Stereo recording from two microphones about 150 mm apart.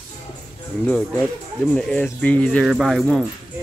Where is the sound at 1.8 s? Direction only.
5° left (ahead or behind).